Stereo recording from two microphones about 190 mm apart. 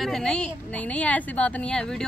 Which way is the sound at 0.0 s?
Centre (ahead or behind).